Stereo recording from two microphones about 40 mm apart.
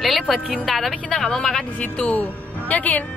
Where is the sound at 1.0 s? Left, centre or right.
Centre.